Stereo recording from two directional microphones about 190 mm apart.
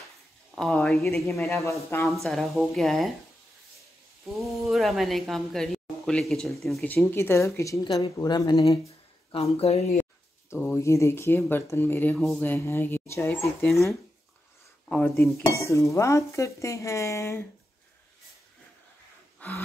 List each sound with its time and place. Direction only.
0.6 s speech: centre (ahead or behind)
1.7 s speech: 15° left (ahead or behind)
2.2 s speech: centre (ahead or behind)
4.5 s speech: centre (ahead or behind); by 8.7 s 20° left (ahead or behind)
9.3 s speech: 30° left (ahead or behind)
10.5 s speech: 15° left (ahead or behind)
19.4 s a sound: 10° left (ahead or behind)